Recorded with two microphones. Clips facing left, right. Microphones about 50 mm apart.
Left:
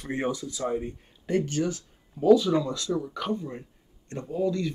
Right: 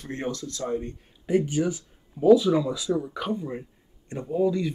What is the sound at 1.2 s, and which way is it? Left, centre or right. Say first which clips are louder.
Speech: right 3 dB; centre.